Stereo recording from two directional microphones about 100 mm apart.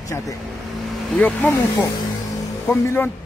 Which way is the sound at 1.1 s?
15° left (ahead or behind).